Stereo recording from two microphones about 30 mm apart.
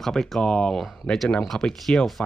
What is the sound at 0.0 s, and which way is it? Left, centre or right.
Speech, centre.